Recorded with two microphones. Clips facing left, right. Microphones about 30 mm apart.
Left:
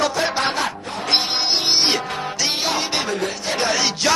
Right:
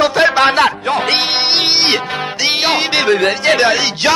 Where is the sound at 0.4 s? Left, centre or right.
Right.